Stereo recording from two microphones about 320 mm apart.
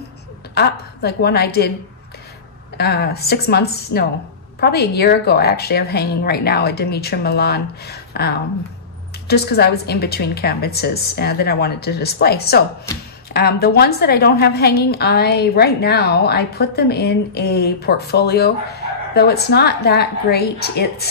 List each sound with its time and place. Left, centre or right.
0.6 s a woman's voice: left
2.8 s a woman's voice: left